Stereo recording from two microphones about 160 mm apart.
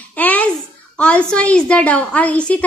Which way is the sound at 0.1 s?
10° left (ahead or behind).